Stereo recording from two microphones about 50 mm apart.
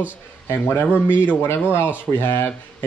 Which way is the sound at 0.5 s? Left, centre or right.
Left.